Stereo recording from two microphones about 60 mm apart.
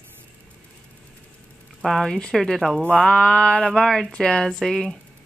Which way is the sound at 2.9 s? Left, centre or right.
Centre.